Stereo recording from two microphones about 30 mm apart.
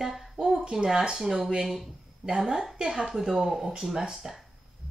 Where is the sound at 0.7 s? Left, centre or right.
Centre.